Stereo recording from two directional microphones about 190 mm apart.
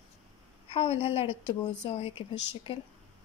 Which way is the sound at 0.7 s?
30° left (ahead or behind).